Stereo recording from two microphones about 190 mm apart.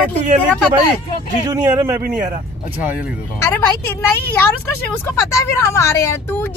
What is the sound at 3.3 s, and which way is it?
Speech, 10° left (ahead or behind).